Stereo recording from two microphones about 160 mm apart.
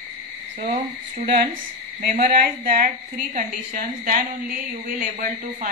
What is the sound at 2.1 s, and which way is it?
Speech, 55° right (ahead or behind).